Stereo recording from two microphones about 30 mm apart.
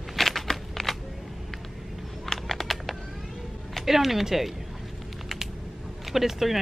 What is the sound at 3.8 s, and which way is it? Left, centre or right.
Speech, centre.